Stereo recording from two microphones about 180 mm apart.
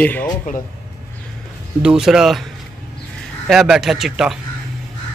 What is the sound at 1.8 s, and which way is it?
Speech, 5° right (ahead or behind).